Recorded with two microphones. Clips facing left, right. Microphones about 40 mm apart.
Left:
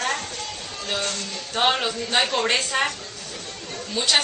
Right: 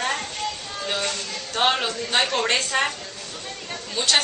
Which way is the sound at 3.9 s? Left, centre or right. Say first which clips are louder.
Even; centre.